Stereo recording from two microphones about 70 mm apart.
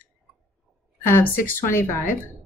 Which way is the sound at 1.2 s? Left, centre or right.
Left.